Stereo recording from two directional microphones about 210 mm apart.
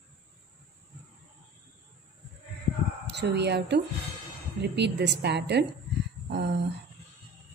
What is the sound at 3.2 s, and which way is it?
A woman's voice, 55° right (ahead or behind).